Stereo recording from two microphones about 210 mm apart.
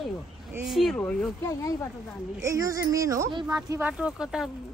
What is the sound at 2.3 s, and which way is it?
Speech, 15° right (ahead or behind).